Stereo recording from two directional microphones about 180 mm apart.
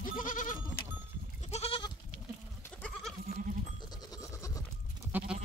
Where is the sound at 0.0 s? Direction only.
45° left (ahead or behind).